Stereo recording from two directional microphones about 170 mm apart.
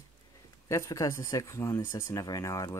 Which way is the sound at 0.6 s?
20° left (ahead or behind).